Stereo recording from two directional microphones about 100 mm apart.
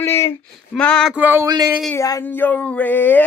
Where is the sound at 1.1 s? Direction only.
20° right (ahead or behind).